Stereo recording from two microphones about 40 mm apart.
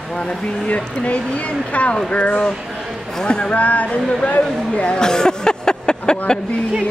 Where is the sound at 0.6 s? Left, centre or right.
Left.